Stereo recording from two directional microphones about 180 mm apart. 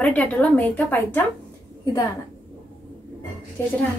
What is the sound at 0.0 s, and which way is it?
A woman's voice, 10° left (ahead or behind).